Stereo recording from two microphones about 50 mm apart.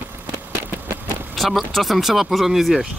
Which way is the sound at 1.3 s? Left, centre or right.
Centre.